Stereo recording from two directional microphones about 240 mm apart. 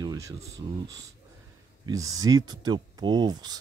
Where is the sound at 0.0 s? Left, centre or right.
Centre.